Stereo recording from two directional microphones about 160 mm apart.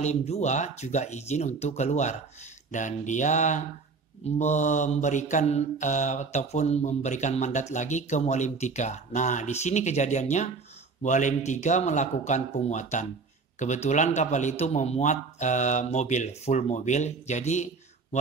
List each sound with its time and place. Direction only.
0.0 s mantra: 40° left (ahead or behind)